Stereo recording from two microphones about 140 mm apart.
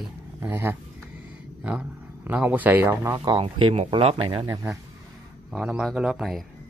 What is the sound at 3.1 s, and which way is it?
Speech, 30° right (ahead or behind).